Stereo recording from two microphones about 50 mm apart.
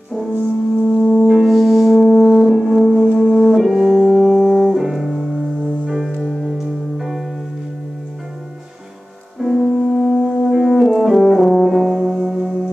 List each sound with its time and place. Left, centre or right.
0.8 s music: centre
1.2 s music: centre
3.2 s brass instrument: centre
5.9 s music: centre
9.4 s music: centre
10.5 s brass instrument: centre
11.9 s gong: centre